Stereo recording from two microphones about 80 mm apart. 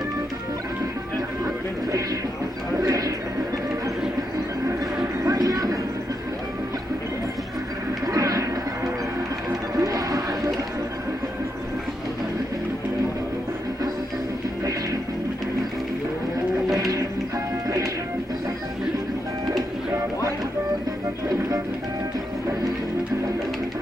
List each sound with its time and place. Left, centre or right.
1.4 s music: right
2.8 s a sound: right
5.0 s music: right
8.1 s music: right
14.6 s music: right
16.7 s music: right